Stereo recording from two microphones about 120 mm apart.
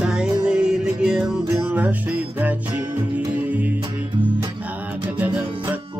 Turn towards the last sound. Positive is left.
turn(degrees=-15)  # may be behind; listen again after turning